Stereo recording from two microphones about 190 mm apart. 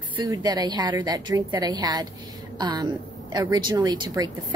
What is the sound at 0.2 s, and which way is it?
A woman's voice, 20° right (ahead or behind).